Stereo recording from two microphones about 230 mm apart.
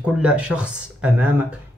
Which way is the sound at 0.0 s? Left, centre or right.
Centre.